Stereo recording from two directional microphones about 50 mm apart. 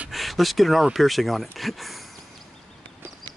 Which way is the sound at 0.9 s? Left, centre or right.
Centre.